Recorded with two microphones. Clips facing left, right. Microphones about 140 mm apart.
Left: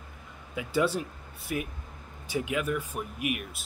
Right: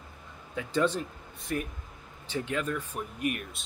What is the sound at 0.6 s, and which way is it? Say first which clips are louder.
Speech: even; 10° left (ahead or behind).